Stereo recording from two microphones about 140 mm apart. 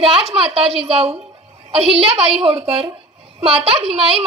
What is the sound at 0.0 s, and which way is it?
A woman's voice, 45° right (ahead or behind).